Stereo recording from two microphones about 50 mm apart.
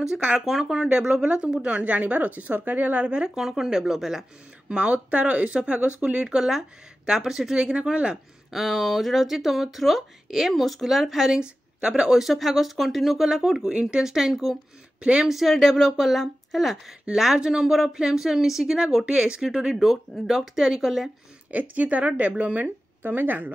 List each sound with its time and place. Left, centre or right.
0.5 s speech: centre; by 3.3 s right
3.3 s speech: centre
4.6 s speech: right
8.5 s speech: centre; by 14.0 s right
14.0 s speech: centre
15.0 s speech: centre
15.2 s speech: centre
21.5 s speech: right